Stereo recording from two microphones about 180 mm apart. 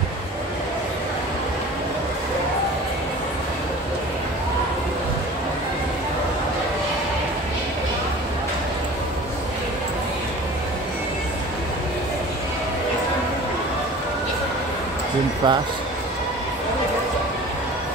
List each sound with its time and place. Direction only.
15.4 s speech: 25° right (ahead or behind)